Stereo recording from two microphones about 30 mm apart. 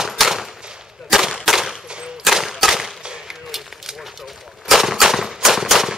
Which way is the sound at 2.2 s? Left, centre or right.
Centre.